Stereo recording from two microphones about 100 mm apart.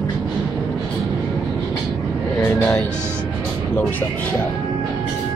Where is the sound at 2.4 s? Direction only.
15° left (ahead or behind).